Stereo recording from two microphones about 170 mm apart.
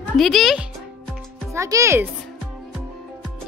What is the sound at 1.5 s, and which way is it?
Speech, 15° right (ahead or behind).